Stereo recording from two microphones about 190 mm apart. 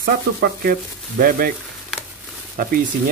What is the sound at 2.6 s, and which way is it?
Speech, 50° right (ahead or behind).